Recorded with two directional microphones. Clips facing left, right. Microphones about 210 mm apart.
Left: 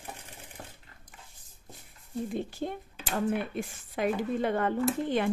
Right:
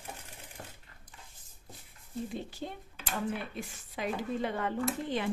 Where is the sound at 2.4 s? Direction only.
55° left (ahead or behind).